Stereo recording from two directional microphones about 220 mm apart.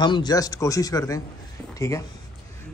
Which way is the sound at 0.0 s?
20° left (ahead or behind).